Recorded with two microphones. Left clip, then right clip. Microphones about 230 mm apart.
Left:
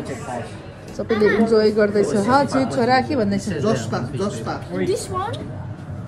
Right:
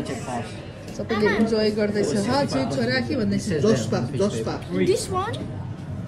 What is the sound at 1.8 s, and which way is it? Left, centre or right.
Speech, left.